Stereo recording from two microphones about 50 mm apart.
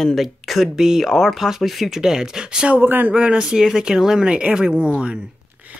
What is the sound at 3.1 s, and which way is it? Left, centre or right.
Speech, centre.